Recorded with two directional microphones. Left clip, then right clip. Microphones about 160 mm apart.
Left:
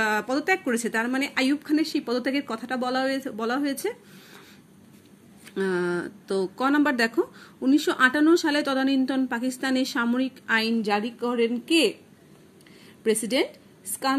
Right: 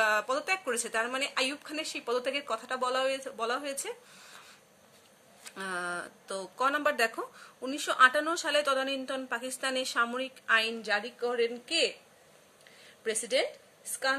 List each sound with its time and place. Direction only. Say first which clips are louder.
0.0 s speech: left 3 dB; 20° left (ahead or behind)
5.5 s speech: left 9 dB; 20° left (ahead or behind)
13.0 s a woman's voice: left 6 dB; 20° left (ahead or behind)